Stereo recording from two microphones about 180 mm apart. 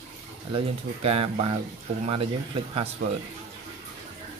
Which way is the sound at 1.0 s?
35° right (ahead or behind).